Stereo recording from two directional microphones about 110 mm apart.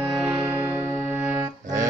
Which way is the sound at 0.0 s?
20° right (ahead or behind).